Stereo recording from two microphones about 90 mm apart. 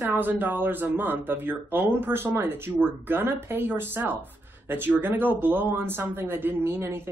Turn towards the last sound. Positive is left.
turn(degrees=-30)  # may be behind; listen again after turning